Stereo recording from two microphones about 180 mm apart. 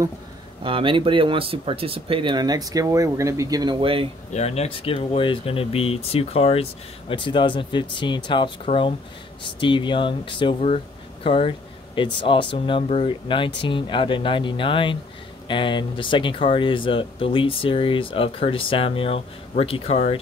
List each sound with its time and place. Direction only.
0.7 s speech: 30° right (ahead or behind)
4.3 s speech: 35° left (ahead or behind)